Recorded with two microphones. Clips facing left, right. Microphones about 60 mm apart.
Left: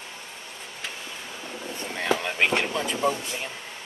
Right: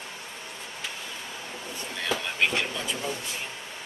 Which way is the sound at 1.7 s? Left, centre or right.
Left.